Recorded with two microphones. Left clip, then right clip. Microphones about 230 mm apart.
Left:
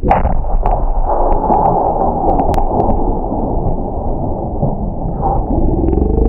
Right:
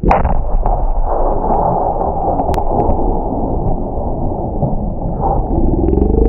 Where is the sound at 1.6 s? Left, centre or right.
Left.